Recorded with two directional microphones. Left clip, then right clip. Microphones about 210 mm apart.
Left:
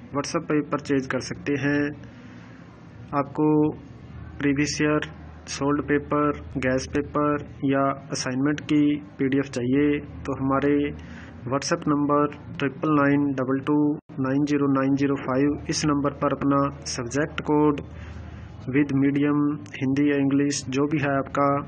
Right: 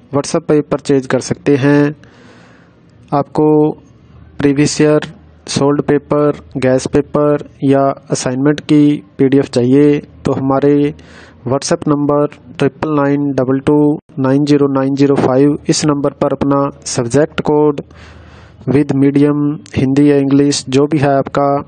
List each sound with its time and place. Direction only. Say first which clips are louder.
0.1 s speech: right 12 dB; 60° right (ahead or behind)
3.1 s speech: right 11 dB; 65° right (ahead or behind)